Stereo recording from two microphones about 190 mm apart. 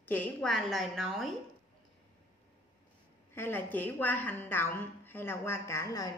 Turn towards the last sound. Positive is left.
turn(degrees=15)  # may be behind; listen again after turning